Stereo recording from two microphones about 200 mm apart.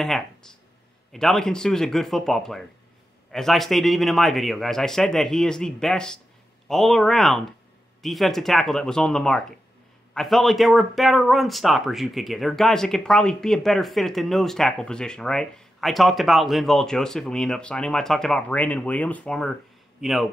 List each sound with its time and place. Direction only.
0.0 s speech: 5° left (ahead or behind)